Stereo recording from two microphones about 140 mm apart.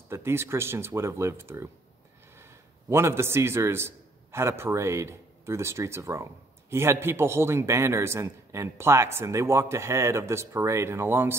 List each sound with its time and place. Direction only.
0.1 s a man's voice: 20° right (ahead or behind)